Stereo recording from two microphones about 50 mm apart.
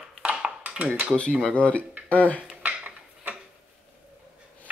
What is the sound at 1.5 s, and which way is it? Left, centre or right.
Speech, left.